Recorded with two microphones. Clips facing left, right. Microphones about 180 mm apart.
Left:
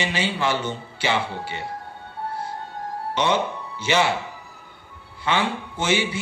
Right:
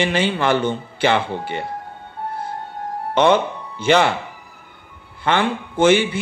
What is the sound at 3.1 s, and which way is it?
Speech, 55° right (ahead or behind).